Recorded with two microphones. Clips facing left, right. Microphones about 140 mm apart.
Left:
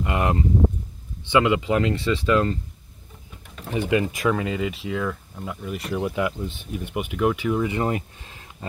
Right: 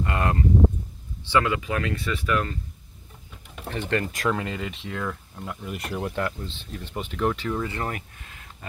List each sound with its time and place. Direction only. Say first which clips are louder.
0.0 s speech: left 2 dB; 15° left (ahead or behind)
3.6 s speech: left 5 dB; 10° left (ahead or behind); by 8.6 s 25° left (ahead or behind)